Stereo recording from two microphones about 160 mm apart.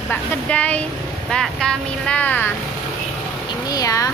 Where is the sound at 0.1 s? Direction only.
10° left (ahead or behind).